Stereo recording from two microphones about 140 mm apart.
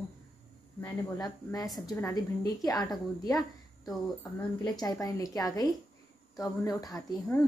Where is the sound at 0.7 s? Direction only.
25° left (ahead or behind).